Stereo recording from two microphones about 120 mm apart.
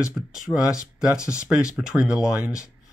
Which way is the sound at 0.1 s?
5° right (ahead or behind).